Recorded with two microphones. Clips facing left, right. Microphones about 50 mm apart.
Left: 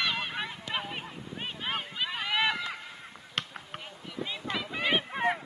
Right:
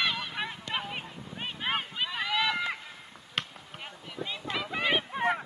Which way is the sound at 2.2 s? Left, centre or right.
Left.